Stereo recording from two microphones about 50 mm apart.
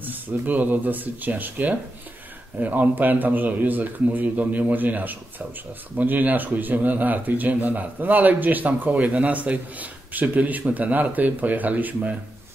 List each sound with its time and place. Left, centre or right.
0.0 s speech: right